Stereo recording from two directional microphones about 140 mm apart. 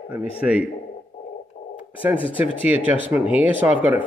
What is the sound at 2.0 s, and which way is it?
Speech, 10° right (ahead or behind).